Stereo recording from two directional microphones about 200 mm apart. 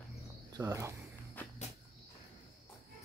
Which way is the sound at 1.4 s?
10° left (ahead or behind).